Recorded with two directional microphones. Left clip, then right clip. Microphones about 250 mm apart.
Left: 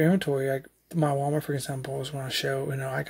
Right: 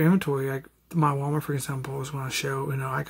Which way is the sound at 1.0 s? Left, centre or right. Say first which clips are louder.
Even; centre.